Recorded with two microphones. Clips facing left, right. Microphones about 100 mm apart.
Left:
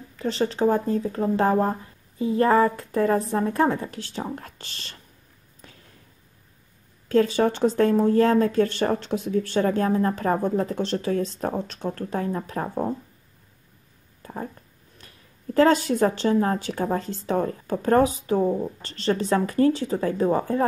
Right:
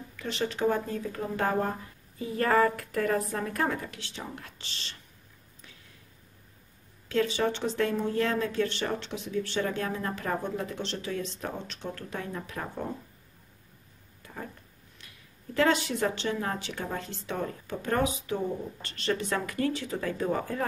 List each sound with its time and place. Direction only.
0.1 s speech: 35° left (ahead or behind)
5.6 s a sound: 40° left (ahead or behind)
7.1 s speech: 40° left (ahead or behind)
14.2 s speech: 35° left (ahead or behind)